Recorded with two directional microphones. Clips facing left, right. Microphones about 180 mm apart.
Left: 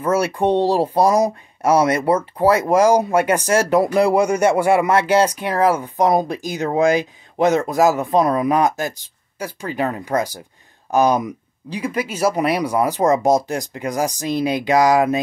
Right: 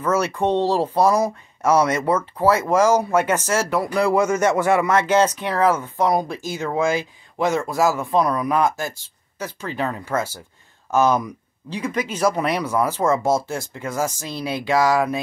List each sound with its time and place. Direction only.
0.4 s speech: 10° left (ahead or behind)